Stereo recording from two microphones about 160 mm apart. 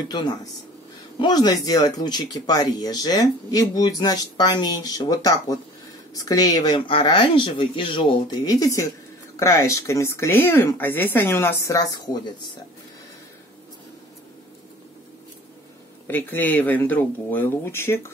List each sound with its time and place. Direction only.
1.2 s speech: 25° left (ahead or behind)
16.1 s speech: 10° left (ahead or behind)